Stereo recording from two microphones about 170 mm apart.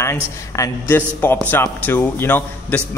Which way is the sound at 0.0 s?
15° left (ahead or behind).